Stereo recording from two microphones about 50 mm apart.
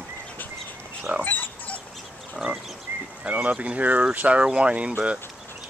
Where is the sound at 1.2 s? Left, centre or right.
Left.